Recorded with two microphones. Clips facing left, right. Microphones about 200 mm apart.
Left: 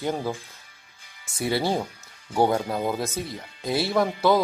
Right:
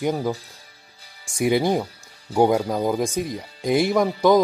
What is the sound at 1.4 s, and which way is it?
Speech, 15° right (ahead or behind).